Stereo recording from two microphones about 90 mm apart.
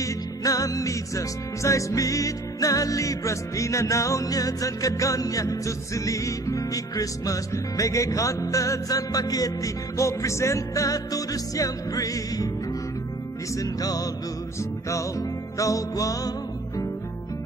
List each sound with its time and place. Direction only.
0.0 s music: 40° left (ahead or behind)
13.6 s music: 45° left (ahead or behind)